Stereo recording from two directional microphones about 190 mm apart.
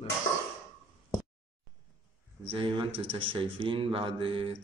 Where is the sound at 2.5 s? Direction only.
25° right (ahead or behind).